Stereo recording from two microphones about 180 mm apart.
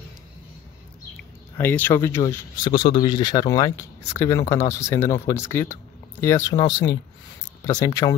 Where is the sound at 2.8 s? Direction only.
30° left (ahead or behind).